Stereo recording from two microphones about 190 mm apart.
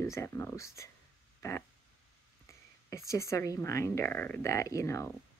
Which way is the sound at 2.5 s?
15° left (ahead or behind).